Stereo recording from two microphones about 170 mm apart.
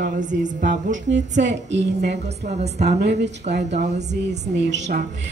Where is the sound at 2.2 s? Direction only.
40° right (ahead or behind).